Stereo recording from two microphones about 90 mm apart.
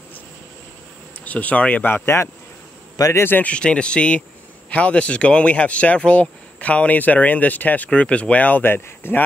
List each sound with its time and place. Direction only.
1.2 s speech: 15° left (ahead or behind)